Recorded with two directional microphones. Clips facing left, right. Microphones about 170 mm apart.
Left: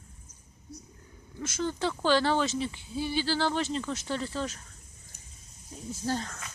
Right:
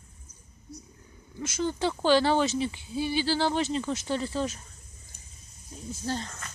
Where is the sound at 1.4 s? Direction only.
20° right (ahead or behind).